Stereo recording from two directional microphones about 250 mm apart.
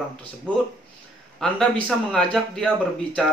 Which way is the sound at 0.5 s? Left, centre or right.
Centre.